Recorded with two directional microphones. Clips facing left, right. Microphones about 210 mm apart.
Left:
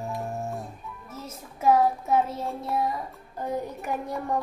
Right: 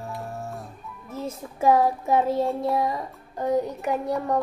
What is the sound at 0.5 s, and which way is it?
Music, centre (ahead or behind).